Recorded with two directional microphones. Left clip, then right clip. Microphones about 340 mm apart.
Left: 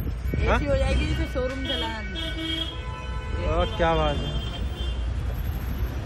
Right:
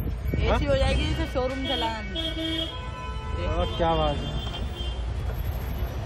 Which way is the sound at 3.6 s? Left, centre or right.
Centre.